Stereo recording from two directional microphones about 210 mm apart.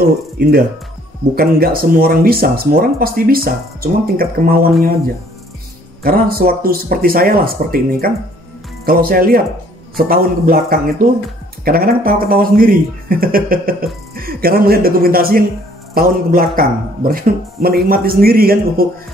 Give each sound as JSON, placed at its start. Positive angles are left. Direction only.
{"t": 0.0, "sound": "speech", "side_deg": -45}
{"t": 6.0, "sound": "speech", "side_deg": -45}